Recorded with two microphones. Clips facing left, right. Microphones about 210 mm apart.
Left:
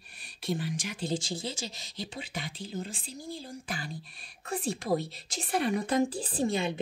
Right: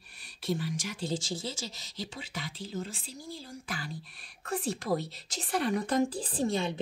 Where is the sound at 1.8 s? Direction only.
55° left (ahead or behind).